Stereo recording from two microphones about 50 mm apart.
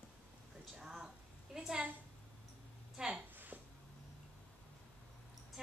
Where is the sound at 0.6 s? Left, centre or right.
Centre.